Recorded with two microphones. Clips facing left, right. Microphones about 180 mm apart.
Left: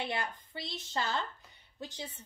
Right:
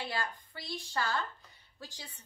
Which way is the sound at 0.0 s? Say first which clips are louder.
Left 1 dB; 20° left (ahead or behind).